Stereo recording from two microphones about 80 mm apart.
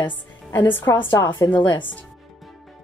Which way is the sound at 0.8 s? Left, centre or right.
Left.